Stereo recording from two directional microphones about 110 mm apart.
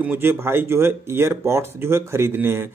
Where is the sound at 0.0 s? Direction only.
20° right (ahead or behind).